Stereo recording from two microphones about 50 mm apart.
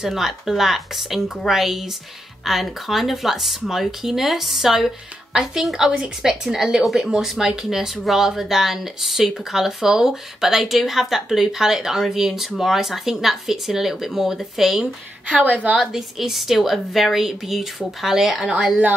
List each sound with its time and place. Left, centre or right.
0.0 s speech: centre
15.2 s a woman's voice: right
15.8 s speech: centre